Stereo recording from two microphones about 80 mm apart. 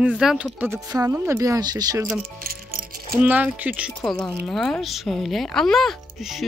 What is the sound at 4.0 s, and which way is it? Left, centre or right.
Speech, centre.